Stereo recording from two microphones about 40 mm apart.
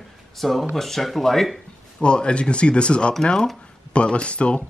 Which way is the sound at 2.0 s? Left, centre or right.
Left.